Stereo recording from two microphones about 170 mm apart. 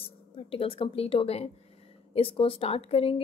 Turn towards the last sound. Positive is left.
turn(degrees=35)  # may be behind; listen again after turning